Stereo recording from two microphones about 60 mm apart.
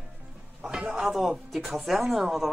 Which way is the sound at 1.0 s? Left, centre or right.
Centre.